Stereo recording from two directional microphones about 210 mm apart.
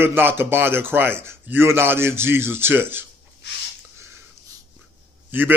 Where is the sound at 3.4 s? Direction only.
55° left (ahead or behind).